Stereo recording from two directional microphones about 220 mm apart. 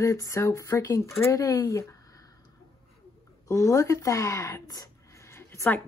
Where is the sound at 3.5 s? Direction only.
15° left (ahead or behind).